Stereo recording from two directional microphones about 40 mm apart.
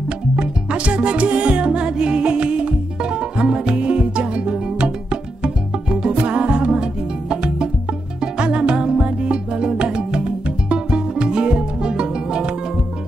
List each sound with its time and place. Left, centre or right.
0.4 s music: right